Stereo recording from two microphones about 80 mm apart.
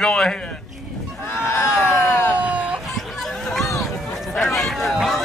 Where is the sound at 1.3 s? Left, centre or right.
Left.